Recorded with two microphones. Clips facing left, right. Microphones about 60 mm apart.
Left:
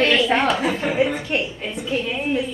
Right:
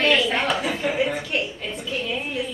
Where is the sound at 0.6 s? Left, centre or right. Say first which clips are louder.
Left 3 dB; left.